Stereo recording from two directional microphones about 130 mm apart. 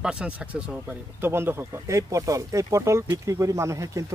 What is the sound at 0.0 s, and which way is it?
Speech, 5° right (ahead or behind).